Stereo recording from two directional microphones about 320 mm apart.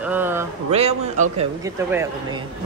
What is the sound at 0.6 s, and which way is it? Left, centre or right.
Speech, centre.